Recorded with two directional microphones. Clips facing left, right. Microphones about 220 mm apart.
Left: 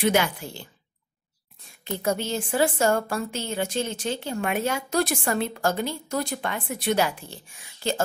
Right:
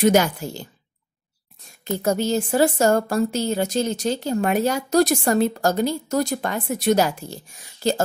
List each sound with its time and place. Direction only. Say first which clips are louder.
0.0 s a woman's voice: right 5 dB; 40° right (ahead or behind)
1.9 s a woman's voice: right 5 dB; 40° right (ahead or behind)